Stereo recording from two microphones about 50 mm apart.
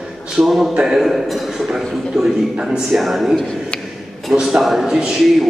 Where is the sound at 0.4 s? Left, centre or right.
Centre.